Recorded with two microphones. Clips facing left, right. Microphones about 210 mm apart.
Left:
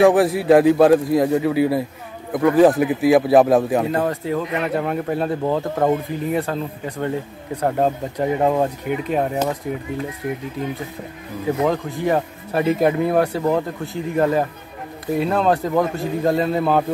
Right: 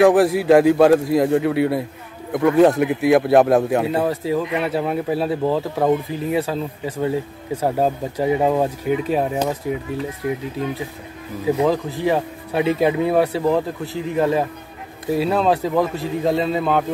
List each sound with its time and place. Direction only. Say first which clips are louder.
0.0 s speech: right 1 dB; centre (ahead or behind)
11.6 s speech: even; centre (ahead or behind)